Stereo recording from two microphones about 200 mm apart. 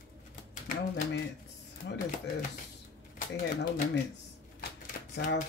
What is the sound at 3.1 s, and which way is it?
Speech, 45° left (ahead or behind).